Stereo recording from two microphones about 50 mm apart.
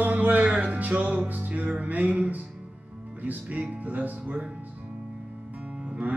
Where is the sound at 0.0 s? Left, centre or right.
Right.